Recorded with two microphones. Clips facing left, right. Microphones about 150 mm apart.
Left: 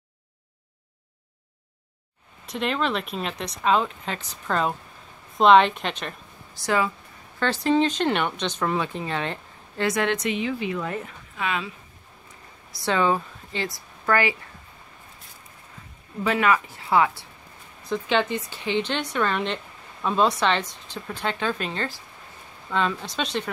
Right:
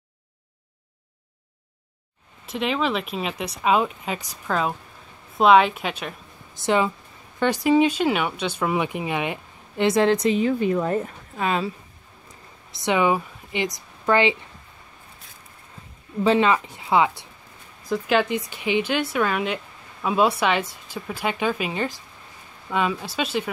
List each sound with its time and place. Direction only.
2.4 s a woman's voice: centre (ahead or behind)
6.6 s speech: 20° right (ahead or behind)
9.8 s a woman's voice: 30° right (ahead or behind)
12.7 s speech: 15° right (ahead or behind)
16.3 s speech: 25° right (ahead or behind)
17.8 s speech: 5° right (ahead or behind)